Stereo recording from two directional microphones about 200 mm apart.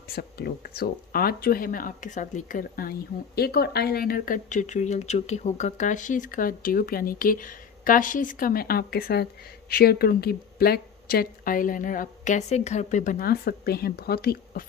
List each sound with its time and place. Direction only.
0.1 s speech: 50° left (ahead or behind)